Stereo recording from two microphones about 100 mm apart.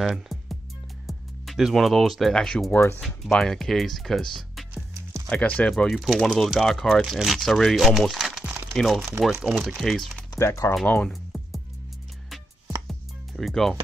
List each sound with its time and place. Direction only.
0.0 s music: centre (ahead or behind)
1.0 s speech: centre (ahead or behind)
2.7 s speech: 25° left (ahead or behind)
3.3 s speech: 5° left (ahead or behind)
4.9 s music: 30° right (ahead or behind)
5.3 s speech: 15° left (ahead or behind)
10.3 s speech: 35° left (ahead or behind)
10.9 s speech: 15° left (ahead or behind)
12.8 s music: centre (ahead or behind)